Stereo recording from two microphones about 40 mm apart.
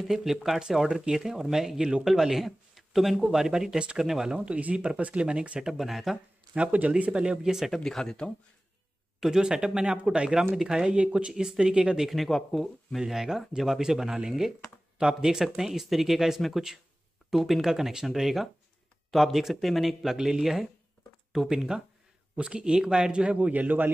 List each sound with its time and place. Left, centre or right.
0.0 s speech: centre
4.5 s speech: right
5.6 s speech: centre
6.5 s a man's voice: right
7.4 s speech: centre
7.7 s speech: centre
9.2 s speech: centre
10.9 s a man's voice: right
12.1 s speech: centre
13.0 s a man's voice: centre; by 23.5 s right
23.5 s a man's voice: right